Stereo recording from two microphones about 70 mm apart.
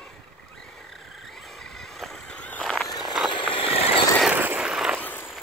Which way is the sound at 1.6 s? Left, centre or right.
Centre.